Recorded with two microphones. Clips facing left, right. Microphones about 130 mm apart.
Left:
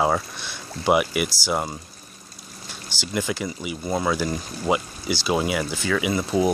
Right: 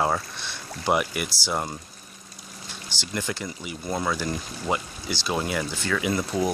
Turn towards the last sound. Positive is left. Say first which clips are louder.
# left 3 dB
turn(degrees=10)  # may be behind; listen again after turning